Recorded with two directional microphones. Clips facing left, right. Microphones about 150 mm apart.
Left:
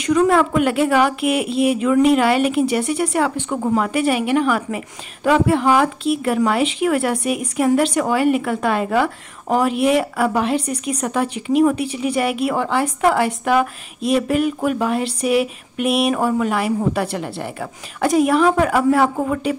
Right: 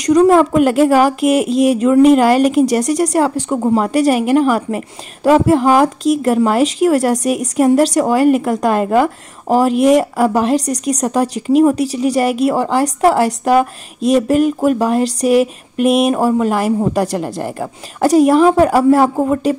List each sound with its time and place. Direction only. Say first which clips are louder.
0.0 s a woman's voice: right 6 dB; 40° right (ahead or behind)